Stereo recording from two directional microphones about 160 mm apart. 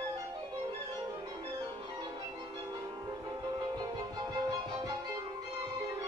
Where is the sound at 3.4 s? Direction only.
25° right (ahead or behind).